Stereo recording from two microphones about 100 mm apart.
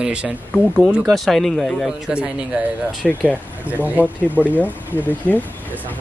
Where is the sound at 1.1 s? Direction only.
5° left (ahead or behind).